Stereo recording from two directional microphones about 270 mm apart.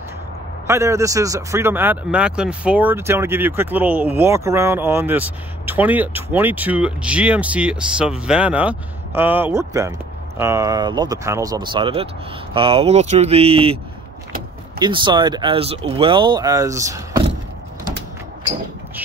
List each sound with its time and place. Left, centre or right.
0.7 s speech: centre
14.8 s speech: centre